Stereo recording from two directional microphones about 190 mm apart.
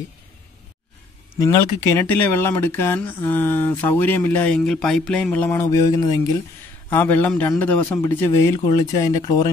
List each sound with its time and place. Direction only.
1.4 s speech: 15° left (ahead or behind)